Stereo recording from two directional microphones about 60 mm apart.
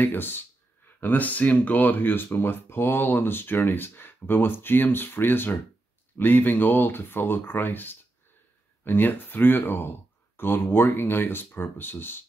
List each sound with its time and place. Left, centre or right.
0.0 s speech: left